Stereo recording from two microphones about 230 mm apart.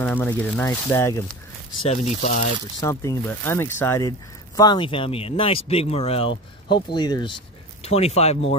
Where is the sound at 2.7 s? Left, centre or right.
Centre.